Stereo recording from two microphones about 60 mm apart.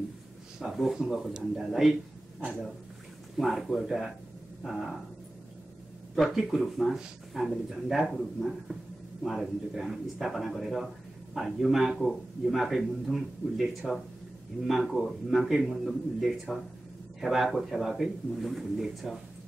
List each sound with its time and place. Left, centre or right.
0.6 s speech: centre
3.3 s speech: centre
6.1 s speech: centre
14.5 s a man's voice: right
14.9 s speech: centre